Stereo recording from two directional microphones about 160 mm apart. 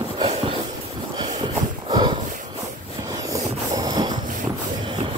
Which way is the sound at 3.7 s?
25° right (ahead or behind).